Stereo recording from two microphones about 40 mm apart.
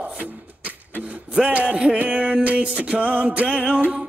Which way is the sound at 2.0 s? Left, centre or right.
Right.